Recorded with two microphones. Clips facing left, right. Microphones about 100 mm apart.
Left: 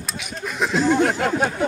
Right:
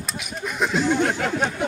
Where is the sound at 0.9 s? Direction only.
40° left (ahead or behind).